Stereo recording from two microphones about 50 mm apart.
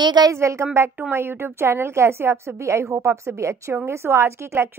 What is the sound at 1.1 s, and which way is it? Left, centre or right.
A woman's voice, right.